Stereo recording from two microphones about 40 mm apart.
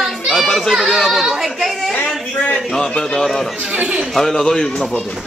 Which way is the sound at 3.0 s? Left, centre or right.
Centre.